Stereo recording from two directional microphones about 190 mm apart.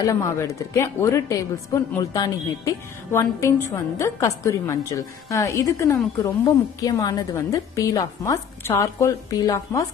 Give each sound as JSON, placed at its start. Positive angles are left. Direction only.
{"t": 0.0, "sound": "speech", "side_deg": 15}